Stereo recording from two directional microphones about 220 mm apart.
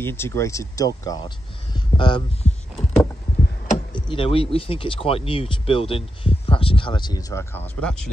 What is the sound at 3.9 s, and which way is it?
Speech, 25° left (ahead or behind).